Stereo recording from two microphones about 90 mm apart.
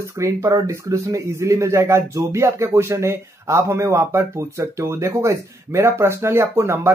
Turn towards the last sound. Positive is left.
turn(degrees=-30)  # may be behind; listen again after turning